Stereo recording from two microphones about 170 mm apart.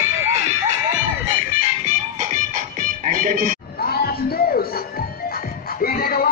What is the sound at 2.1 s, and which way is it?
Music, 50° right (ahead or behind).